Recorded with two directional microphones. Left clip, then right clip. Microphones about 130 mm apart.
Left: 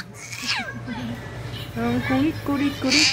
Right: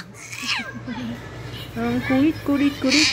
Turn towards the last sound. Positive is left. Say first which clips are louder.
# right 1 dB
turn(degrees=10)  # may be behind; listen again after turning